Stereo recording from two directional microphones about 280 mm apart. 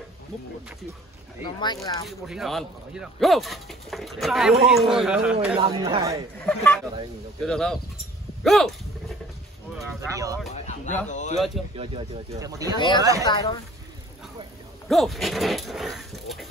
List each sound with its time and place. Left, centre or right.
1.4 s speech: centre
2.0 s speech: centre
5.6 s speech: centre
6.4 s speech: centre
9.8 s a sound: centre
10.5 s speech: left
11.3 s speech: centre
11.7 s speech: centre
12.7 s speech: centre
14.9 s speech: centre